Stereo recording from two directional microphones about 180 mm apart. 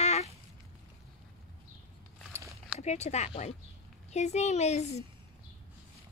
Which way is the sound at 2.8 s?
40° left (ahead or behind).